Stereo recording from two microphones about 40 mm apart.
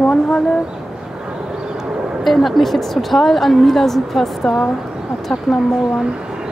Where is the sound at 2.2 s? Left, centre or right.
Centre.